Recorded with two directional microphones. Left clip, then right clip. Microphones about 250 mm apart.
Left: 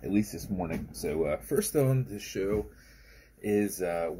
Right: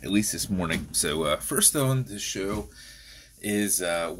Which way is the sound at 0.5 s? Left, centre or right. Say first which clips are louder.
Right 5 dB; right.